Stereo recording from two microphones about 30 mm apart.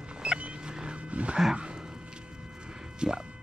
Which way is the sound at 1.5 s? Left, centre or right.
Right.